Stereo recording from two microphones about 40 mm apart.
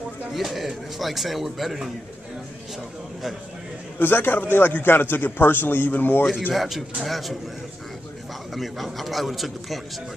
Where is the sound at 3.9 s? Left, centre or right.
Left.